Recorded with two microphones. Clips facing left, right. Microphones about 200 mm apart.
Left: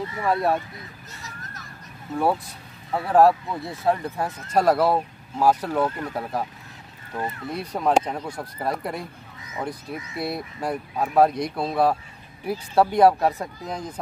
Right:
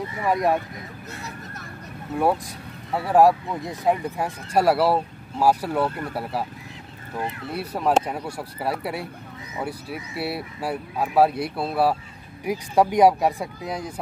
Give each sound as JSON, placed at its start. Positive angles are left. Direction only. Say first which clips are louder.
{"t": 0.2, "sound": "speech", "louder": "right 1 dB", "side_deg": -15}
{"t": 1.1, "sound": "a sound", "louder": "right 5 dB", "side_deg": -60}
{"t": 2.9, "sound": "speech", "louder": "even", "side_deg": -10}